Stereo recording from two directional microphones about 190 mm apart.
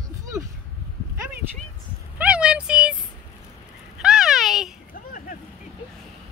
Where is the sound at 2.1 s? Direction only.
5° right (ahead or behind).